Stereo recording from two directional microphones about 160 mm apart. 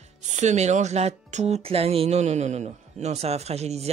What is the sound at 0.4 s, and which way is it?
Speech, 45° right (ahead or behind).